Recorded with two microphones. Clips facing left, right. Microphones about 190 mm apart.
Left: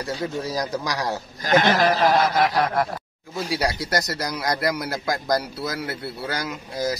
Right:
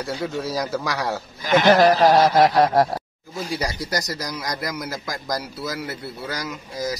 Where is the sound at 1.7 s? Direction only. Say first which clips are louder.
Right 5 dB; 45° right (ahead or behind).